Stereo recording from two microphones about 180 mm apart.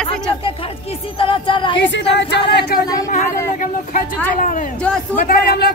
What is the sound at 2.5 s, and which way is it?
Speech, 65° left (ahead or behind).